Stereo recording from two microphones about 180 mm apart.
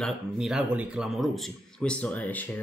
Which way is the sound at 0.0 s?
5° right (ahead or behind).